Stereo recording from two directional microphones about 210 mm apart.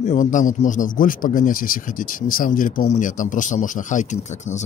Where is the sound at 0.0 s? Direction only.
35° left (ahead or behind).